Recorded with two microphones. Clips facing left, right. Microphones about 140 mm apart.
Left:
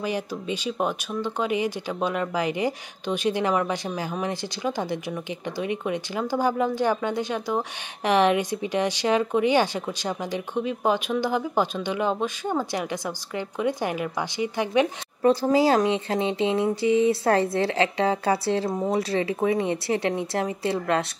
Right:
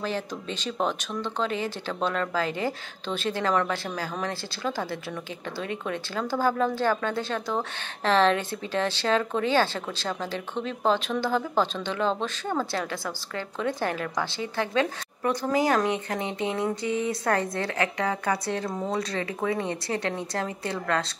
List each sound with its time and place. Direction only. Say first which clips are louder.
0.0 s speech: left 2 dB; 15° left (ahead or behind)